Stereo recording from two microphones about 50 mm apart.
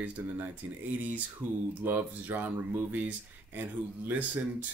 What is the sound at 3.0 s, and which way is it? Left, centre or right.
Speech, right.